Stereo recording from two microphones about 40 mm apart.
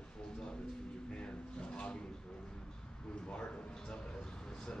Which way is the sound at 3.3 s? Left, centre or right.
Left.